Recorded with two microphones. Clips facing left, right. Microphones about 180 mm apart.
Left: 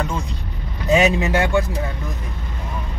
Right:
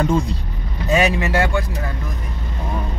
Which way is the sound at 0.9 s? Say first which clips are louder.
Left 1 dB; 20° left (ahead or behind).